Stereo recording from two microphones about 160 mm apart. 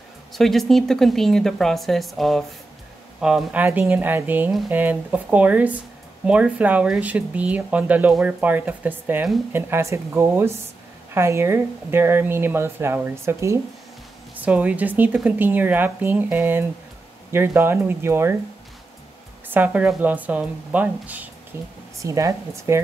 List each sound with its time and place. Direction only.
0.3 s a woman's voice: centre (ahead or behind); by 18.4 s 15° right (ahead or behind)
19.5 s a woman's voice: 10° right (ahead or behind)